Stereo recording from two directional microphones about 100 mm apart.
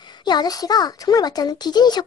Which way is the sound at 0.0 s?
45° left (ahead or behind).